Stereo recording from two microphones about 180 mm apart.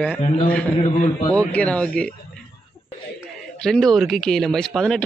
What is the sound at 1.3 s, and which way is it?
Speech, 5° left (ahead or behind).